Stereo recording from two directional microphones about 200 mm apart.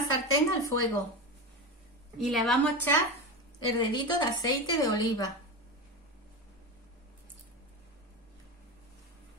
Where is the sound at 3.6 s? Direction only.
20° left (ahead or behind).